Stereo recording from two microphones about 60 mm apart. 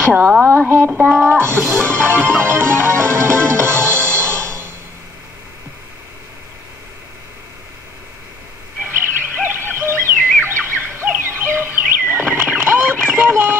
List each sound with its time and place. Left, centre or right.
0.4 s speech: right
1.6 s music: centre
2.2 s music: right
8.8 s bird: right
12.5 s a sound: right